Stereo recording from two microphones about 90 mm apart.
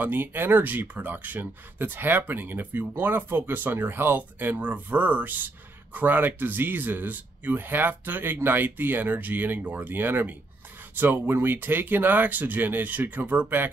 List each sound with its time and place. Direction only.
0.0 s speech: 20° right (ahead or behind)